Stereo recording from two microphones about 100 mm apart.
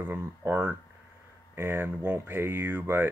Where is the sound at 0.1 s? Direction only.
20° right (ahead or behind).